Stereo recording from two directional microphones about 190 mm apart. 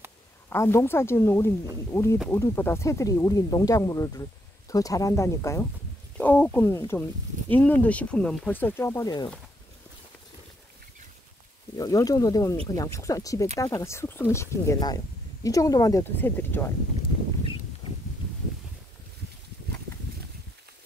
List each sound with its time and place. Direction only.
0.5 s speech: 15° left (ahead or behind)
11.7 s speech: 20° left (ahead or behind)